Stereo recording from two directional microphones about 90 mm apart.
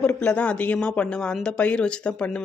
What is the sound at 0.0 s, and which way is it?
Speech, 15° left (ahead or behind).